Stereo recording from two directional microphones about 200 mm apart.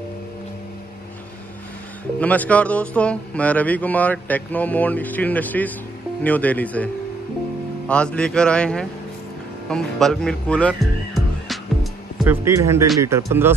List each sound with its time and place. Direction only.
2.1 s speech: 5° left (ahead or behind)
7.9 s a man's voice: 5° left (ahead or behind)
12.3 s speech: 15° right (ahead or behind)